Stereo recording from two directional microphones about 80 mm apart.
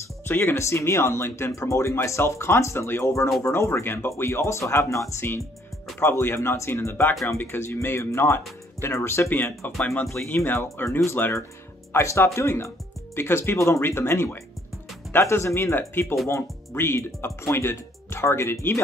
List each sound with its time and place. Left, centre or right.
0.3 s speech: left
9.8 s speech: centre
10.2 s speech: left